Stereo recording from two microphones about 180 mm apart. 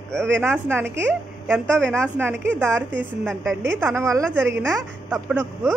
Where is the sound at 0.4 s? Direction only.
15° right (ahead or behind).